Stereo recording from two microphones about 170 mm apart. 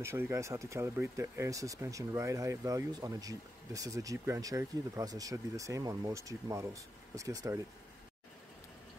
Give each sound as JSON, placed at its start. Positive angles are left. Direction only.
{"t": 0.0, "sound": "speech", "side_deg": -15}